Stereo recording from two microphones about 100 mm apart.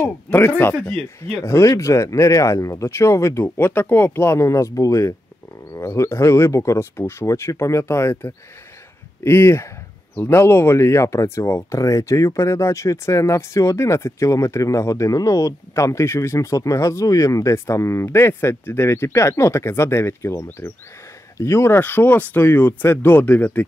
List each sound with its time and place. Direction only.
0.0 s speech: 20° left (ahead or behind)
1.4 s speech: 30° left (ahead or behind)